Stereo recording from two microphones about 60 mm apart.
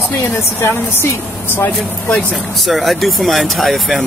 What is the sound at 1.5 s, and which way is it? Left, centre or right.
Speech, left.